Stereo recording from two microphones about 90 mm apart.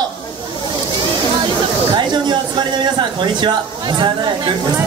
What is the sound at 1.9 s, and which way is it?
Speech, 60° right (ahead or behind).